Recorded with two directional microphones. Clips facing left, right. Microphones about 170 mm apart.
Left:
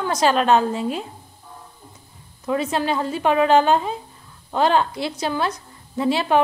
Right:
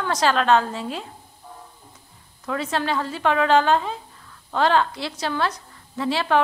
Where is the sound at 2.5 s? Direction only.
15° left (ahead or behind).